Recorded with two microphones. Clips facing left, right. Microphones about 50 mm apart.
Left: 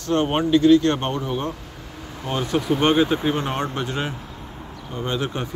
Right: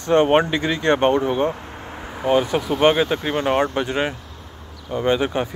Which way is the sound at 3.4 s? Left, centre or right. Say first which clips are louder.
Right 6 dB; right.